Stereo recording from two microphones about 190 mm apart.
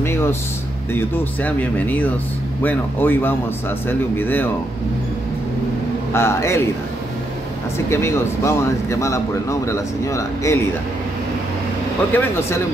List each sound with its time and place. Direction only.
0.0 s air conditioning: 10° left (ahead or behind)
0.9 s speech: 10° left (ahead or behind)
6.1 s speech: 15° left (ahead or behind)
7.9 s speech: 15° left (ahead or behind)
12.1 s speech: 10° left (ahead or behind)